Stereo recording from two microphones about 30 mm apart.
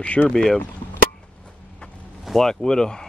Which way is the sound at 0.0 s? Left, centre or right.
Left.